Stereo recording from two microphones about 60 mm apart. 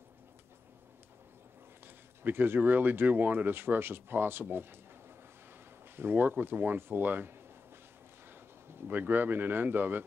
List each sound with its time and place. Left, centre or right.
2.2 s speech: right
5.9 s speech: right
8.8 s speech: right